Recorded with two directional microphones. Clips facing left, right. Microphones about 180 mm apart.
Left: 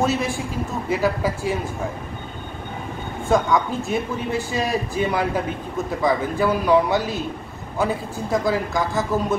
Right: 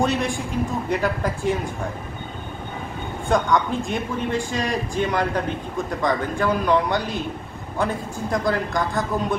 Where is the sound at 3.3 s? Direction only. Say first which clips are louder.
Left 1 dB; centre (ahead or behind).